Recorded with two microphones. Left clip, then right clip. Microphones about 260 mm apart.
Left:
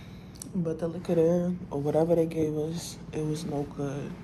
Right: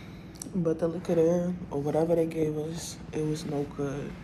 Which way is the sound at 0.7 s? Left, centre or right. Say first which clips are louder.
Right 3 dB; centre.